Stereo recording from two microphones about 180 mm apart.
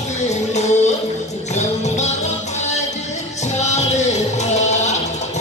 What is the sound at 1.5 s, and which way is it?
Music, 40° left (ahead or behind).